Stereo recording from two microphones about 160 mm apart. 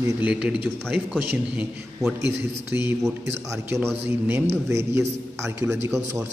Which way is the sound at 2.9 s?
15° right (ahead or behind).